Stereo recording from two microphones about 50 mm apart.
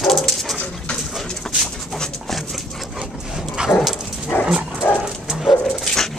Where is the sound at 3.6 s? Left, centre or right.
Centre.